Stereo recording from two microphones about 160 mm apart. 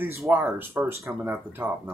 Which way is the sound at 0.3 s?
10° right (ahead or behind).